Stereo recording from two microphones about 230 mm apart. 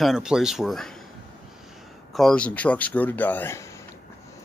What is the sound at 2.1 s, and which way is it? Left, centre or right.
Speech, centre.